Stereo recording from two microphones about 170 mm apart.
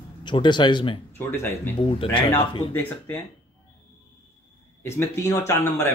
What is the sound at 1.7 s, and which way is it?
Speech, 30° left (ahead or behind).